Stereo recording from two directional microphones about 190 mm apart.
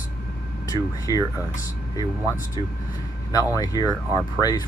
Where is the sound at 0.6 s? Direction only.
20° left (ahead or behind).